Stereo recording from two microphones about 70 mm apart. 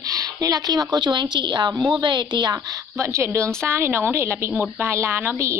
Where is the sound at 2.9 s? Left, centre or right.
Right.